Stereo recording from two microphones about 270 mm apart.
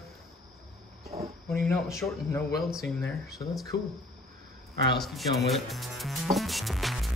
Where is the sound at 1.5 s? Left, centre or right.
Centre.